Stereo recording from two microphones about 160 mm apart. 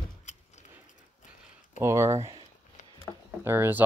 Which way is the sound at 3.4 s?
15° right (ahead or behind).